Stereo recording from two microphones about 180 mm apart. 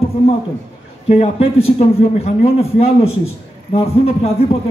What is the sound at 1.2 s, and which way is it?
A man's voice, 35° left (ahead or behind).